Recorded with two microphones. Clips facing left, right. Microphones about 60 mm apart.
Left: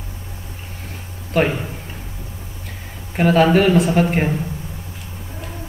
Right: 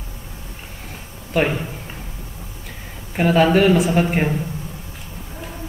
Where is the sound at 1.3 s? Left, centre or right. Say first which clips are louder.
Left 1 dB; centre.